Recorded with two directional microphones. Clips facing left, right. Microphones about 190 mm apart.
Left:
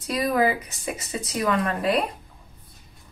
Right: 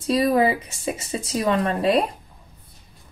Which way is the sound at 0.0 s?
30° right (ahead or behind).